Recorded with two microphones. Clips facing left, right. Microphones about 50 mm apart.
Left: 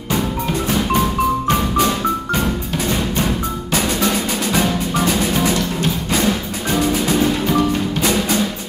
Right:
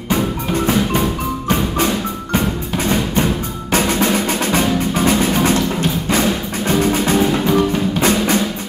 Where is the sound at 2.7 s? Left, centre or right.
Right.